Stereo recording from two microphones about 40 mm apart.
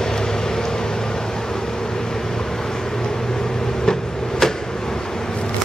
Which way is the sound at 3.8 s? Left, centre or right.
Centre.